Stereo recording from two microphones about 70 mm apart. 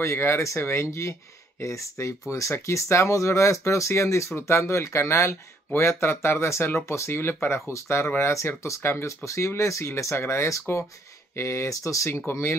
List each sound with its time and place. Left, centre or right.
0.0 s speech: left